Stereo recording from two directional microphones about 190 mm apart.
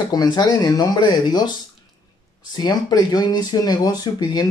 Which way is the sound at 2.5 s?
20° left (ahead or behind).